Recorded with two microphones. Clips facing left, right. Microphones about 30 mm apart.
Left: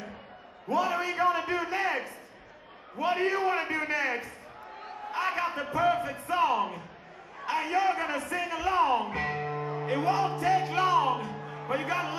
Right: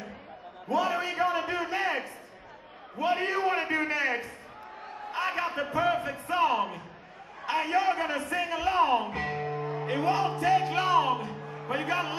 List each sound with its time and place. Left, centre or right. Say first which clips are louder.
0.7 s a sound: even; centre
3.0 s a man's voice: even; centre
3.8 s a sound: right 1 dB; centre
6.2 s a man's voice: even; centre
9.1 s music: even; centre
11.4 s music: even; centre